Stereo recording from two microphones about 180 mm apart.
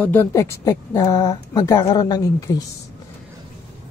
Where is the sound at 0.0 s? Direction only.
10° left (ahead or behind).